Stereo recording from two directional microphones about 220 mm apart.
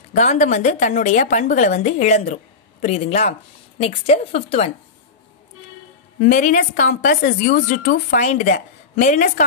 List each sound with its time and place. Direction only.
0.1 s a woman's voice: 35° left (ahead or behind)
6.1 s a woman's voice: 35° left (ahead or behind)